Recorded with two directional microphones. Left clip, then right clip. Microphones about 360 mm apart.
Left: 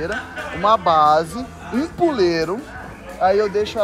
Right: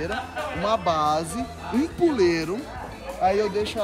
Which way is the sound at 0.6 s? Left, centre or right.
Centre.